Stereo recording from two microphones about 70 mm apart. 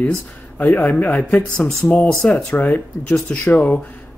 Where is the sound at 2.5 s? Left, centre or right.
Left.